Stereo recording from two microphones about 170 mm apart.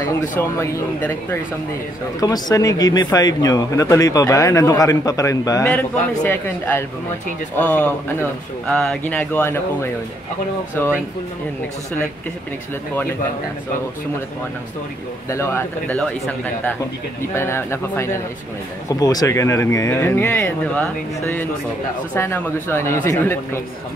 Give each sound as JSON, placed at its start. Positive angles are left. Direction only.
{"t": 0.4, "sound": "speech", "side_deg": 15}
{"t": 15.2, "sound": "speech", "side_deg": 15}
{"t": 17.2, "sound": "speech", "side_deg": 15}